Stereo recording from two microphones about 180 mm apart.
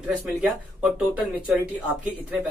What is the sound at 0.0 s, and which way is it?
Speech, 5° right (ahead or behind).